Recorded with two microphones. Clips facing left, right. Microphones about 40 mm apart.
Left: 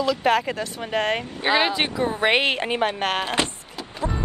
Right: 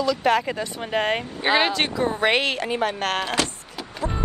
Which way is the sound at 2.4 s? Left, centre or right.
Left.